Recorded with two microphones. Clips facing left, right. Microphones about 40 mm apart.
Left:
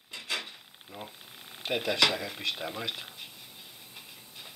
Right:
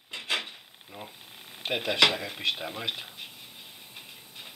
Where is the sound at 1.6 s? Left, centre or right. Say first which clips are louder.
Right 3 dB; right.